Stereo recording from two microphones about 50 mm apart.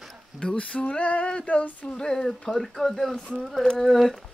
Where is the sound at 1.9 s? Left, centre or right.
Centre.